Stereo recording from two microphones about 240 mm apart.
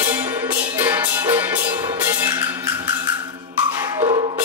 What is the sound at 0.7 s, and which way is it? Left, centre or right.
Music, centre.